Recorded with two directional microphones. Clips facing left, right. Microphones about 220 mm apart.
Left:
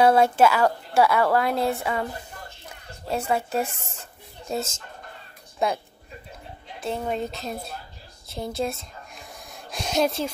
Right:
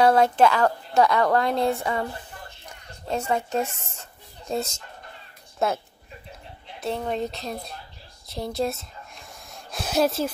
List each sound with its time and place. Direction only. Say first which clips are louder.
0.0 s a woman's voice: even; 10° left (ahead or behind)
3.1 s a woman's voice: even; 10° left (ahead or behind)
6.8 s speech: right 1 dB; 5° left (ahead or behind)
8.3 s a sound: right 1 dB; centre (ahead or behind)